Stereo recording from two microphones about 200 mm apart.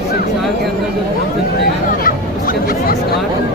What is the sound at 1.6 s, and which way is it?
Speech, 45° left (ahead or behind).